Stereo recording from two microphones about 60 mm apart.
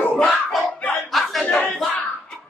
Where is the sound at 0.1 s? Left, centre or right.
Left.